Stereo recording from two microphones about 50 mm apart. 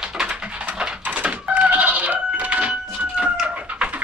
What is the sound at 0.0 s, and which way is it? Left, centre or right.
Dog, centre.